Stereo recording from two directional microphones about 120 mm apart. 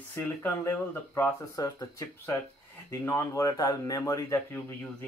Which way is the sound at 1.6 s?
30° left (ahead or behind).